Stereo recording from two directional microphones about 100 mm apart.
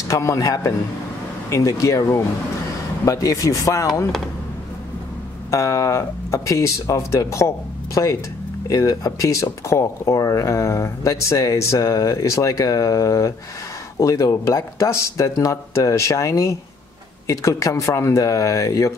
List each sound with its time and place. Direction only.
0.1 s speech: 30° left (ahead or behind)
5.5 s speech: 30° left (ahead or behind)